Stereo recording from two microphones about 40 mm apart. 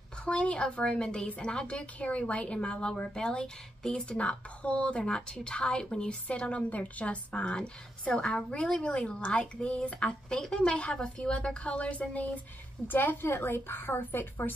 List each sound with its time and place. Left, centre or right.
0.2 s a woman's voice: left
12.8 s a woman's voice: left